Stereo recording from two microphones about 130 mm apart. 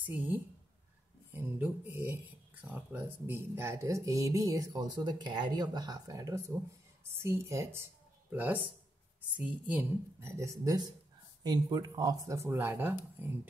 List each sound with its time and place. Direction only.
0.0 s speech: 15° right (ahead or behind)
10.3 s speech: 25° right (ahead or behind)